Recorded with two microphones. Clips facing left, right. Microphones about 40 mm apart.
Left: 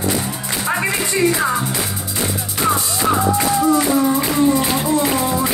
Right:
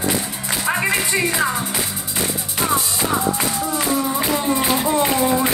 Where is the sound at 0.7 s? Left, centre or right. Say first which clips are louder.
Even; centre.